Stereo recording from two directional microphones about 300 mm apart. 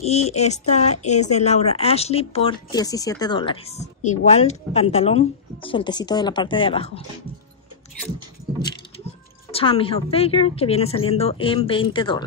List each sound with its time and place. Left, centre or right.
0.0 s speech: left
9.5 s speech: centre